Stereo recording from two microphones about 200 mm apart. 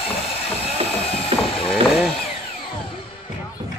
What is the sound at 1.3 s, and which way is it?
Mechanisms, 30° right (ahead or behind).